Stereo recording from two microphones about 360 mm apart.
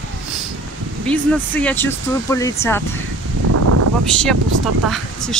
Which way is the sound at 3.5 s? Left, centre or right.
Right.